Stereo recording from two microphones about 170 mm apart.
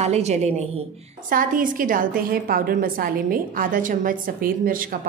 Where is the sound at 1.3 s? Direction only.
55° right (ahead or behind).